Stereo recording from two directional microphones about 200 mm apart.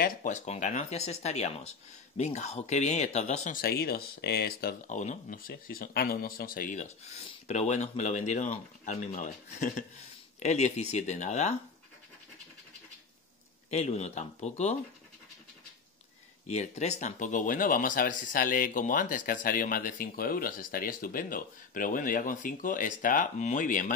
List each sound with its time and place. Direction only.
0.0 s speech: 40° left (ahead or behind)
3.6 s speech: 50° left (ahead or behind)
13.7 s speech: 35° left (ahead or behind)
16.4 s speech: 35° left (ahead or behind)